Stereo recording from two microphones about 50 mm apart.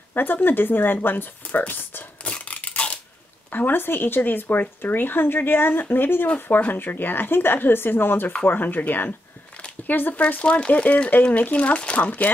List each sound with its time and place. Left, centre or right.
0.1 s speech: left
2.2 s a sound: left
3.4 s speech: left
10.2 s speech: left